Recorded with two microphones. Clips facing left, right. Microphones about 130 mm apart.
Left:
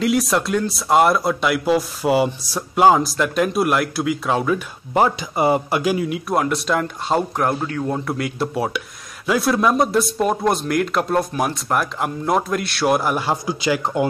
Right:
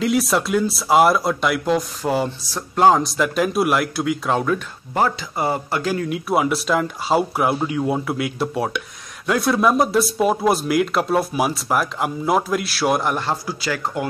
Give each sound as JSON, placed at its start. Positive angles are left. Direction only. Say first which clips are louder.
{"t": 0.0, "sound": "speech", "louder": "even", "side_deg": 0}
{"t": 4.9, "sound": "a man's voice", "louder": "left 3 dB", "side_deg": 15}
{"t": 6.0, "sound": "speech", "louder": "right 1 dB", "side_deg": 0}
{"t": 13.3, "sound": "speech", "louder": "left 4 dB", "side_deg": 20}